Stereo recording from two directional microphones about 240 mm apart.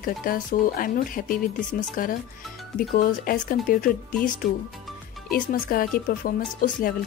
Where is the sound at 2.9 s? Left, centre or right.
Left.